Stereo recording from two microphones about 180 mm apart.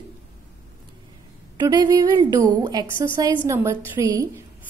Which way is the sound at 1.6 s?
25° right (ahead or behind).